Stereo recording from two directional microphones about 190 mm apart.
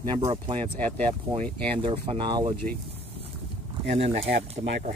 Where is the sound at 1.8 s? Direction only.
30° right (ahead or behind).